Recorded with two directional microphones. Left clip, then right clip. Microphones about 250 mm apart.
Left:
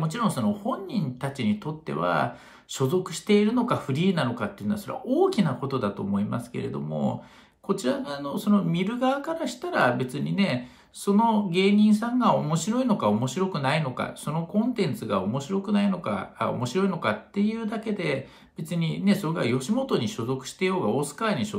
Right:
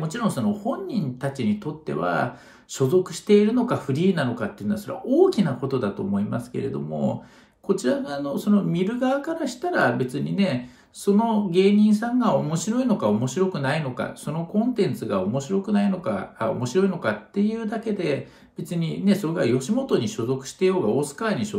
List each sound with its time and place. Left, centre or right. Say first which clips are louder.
0.0 s speech: right 1 dB; centre